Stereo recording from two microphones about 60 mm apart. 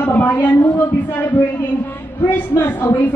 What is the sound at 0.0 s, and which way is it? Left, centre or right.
A man's voice, left.